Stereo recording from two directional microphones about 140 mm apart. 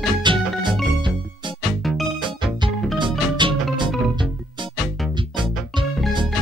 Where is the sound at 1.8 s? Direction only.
Centre (ahead or behind).